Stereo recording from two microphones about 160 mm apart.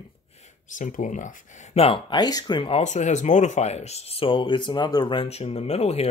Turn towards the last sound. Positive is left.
turn(degrees=40)  # may be behind; listen again after turning